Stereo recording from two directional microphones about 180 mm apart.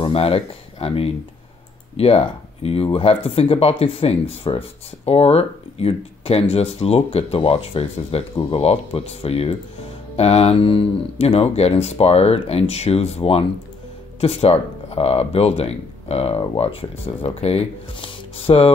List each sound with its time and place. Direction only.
0.0 s speech: 30° left (ahead or behind)